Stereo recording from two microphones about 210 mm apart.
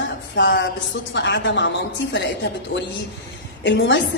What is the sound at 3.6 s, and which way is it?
Speech, 60° left (ahead or behind).